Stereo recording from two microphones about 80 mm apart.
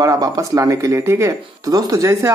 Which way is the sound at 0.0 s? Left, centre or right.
Right.